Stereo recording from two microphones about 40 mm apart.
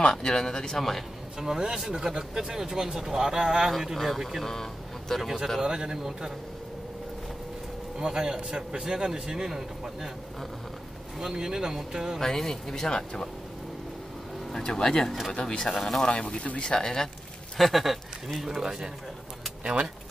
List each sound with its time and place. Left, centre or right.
0.1 s speech: centre
1.4 s speech: centre
5.6 s speech: centre
8.0 s speech: centre
11.1 s speech: centre
12.2 s speech: centre
14.5 s speech: centre
16.1 s speech: left
17.6 s speech: centre
19.6 s speech: right